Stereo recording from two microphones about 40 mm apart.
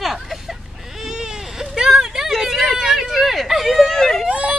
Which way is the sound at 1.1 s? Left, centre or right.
Centre.